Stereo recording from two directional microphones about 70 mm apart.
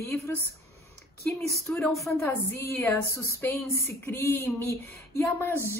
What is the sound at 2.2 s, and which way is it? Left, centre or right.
Speech, left.